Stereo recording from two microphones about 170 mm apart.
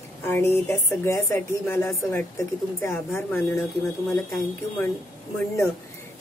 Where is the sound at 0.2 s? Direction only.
15° left (ahead or behind).